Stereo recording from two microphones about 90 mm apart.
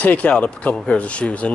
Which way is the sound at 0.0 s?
15° left (ahead or behind).